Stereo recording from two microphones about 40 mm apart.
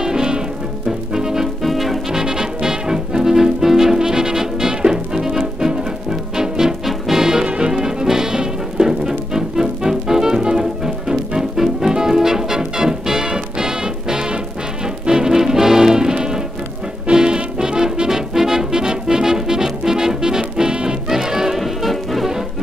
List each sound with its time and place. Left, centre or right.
0.0 s music: centre
1.6 s music: centre; by 7.7 s right
7.7 s music: centre